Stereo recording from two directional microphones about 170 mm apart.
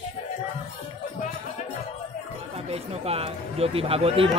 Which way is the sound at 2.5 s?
35° right (ahead or behind).